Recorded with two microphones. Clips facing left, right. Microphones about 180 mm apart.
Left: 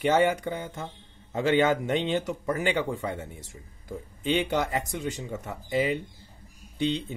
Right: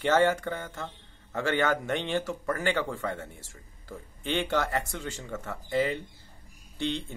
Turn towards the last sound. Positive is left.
turn(degrees=15)  # may be behind; listen again after turning